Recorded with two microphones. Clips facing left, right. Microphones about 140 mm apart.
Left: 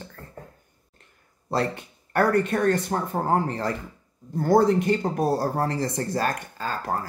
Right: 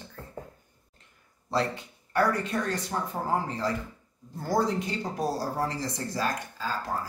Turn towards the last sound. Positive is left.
turn(degrees=60)  # may be behind; listen again after turning